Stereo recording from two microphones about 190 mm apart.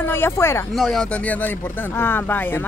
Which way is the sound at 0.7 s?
Centre (ahead or behind).